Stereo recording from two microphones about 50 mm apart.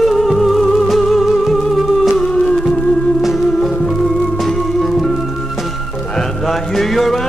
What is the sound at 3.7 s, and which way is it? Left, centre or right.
Music, centre.